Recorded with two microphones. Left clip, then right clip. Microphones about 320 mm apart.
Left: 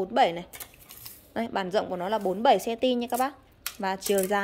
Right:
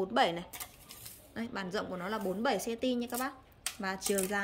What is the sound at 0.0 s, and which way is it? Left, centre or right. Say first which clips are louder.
A woman's voice: left 6 dB; centre.